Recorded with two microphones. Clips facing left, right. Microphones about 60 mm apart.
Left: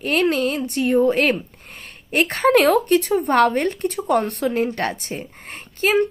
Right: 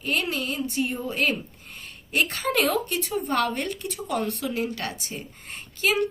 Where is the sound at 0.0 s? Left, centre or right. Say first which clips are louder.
Left 8 dB; left.